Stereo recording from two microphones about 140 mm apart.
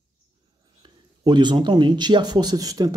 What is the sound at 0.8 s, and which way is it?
Speech, 30° right (ahead or behind).